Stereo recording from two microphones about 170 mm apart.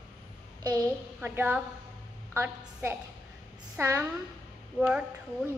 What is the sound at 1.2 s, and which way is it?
A woman's voice, 10° right (ahead or behind).